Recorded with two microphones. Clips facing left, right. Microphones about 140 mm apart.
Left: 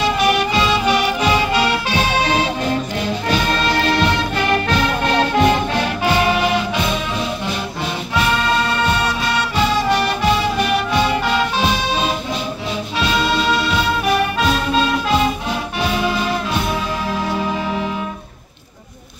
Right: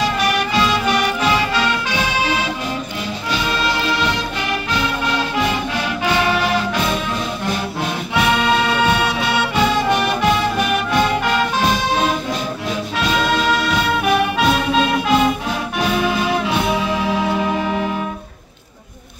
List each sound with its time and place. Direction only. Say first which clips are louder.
0.6 s music: left 1 dB; 5° left (ahead or behind)
2.0 s music: left 4 dB; 40° left (ahead or behind)
3.3 s music: left 1 dB; 50° left (ahead or behind)
8.1 s music: right 1 dB; 5° right (ahead or behind)
10.9 s music: even; centre (ahead or behind)
13.4 s music: even; centre (ahead or behind)